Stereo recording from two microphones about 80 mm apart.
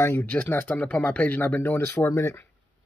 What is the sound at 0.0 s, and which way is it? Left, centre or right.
Speech, left.